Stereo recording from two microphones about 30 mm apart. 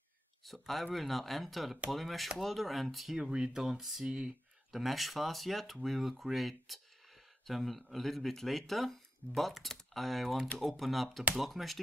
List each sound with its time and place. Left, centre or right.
0.5 s speech: centre
3.2 s speech: right
4.0 s speech: right
4.7 s speech: centre